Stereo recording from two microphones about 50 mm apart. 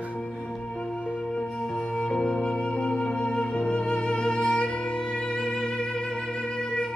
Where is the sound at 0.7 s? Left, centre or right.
Left.